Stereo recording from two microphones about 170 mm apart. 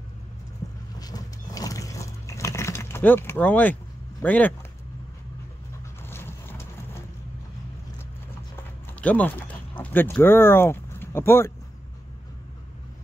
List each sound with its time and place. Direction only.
0.9 s vehicle: 20° left (ahead or behind)
4.2 s speech: 10° left (ahead or behind)
6.0 s boat: 15° left (ahead or behind)
9.0 s speech: 10° left (ahead or behind)